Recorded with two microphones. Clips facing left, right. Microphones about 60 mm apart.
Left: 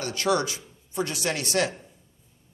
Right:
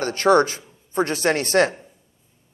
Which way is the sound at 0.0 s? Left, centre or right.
Right.